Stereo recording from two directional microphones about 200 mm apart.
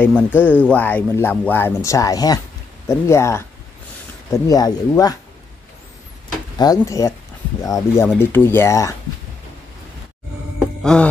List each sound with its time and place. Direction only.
0.0 s speech: 10° left (ahead or behind)
6.6 s speech: 15° left (ahead or behind)
10.8 s music: 5° left (ahead or behind)